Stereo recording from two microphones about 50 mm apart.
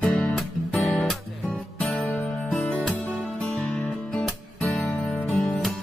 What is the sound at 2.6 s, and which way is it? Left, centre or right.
Music, left.